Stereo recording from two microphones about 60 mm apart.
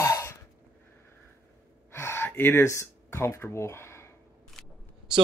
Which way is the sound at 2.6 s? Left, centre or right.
Left.